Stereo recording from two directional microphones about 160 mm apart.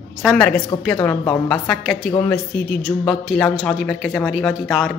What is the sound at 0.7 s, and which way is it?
Speech, 25° left (ahead or behind).